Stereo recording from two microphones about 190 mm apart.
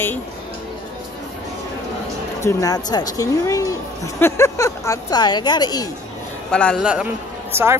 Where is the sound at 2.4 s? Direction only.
20° left (ahead or behind).